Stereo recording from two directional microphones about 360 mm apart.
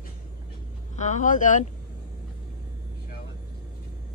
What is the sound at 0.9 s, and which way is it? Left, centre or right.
Speech, centre.